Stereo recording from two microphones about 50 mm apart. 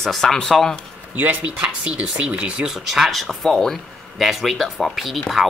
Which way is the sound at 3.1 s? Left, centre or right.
Centre.